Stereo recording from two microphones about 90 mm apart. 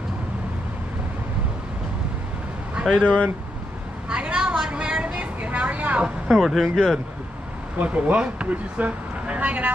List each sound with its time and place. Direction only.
2.8 s speech: 10° left (ahead or behind)
4.1 s a sound: 10° right (ahead or behind)
6.2 s speech: centre (ahead or behind)
7.8 s speech: 10° right (ahead or behind)